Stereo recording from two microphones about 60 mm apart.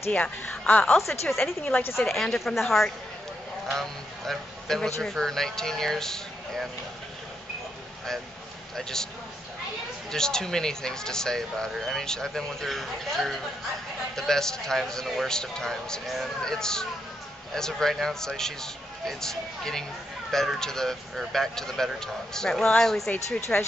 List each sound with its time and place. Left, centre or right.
0.1 s a woman's voice: centre
0.9 s a woman's voice: centre
1.8 s a woman's voice: left
2.0 s a woman's voice: centre
4.3 s speech: centre
9.0 s speech: centre
10.1 s speech: centre